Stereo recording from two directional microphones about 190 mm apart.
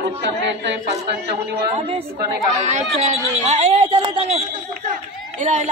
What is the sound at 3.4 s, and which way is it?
Speech, 35° right (ahead or behind).